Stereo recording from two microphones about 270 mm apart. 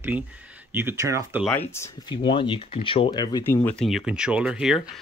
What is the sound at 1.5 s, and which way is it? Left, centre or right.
Speech, centre.